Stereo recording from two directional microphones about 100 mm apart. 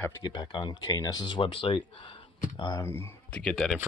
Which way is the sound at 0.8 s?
35° left (ahead or behind).